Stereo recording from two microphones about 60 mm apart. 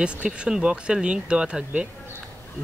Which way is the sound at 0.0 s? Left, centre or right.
Centre.